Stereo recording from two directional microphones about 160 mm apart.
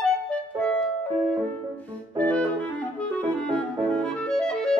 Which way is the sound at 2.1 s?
10° left (ahead or behind).